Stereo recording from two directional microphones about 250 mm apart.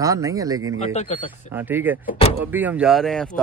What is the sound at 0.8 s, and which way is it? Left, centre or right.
Speech, left.